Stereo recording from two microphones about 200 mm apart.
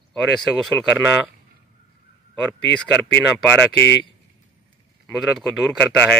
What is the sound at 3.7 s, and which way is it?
Speech, 60° left (ahead or behind).